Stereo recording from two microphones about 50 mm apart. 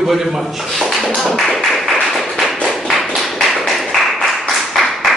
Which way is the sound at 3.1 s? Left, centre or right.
Centre.